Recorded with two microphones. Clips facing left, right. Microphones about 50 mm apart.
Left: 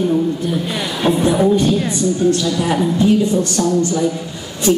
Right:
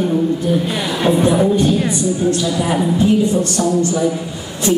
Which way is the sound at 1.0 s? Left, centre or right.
Centre.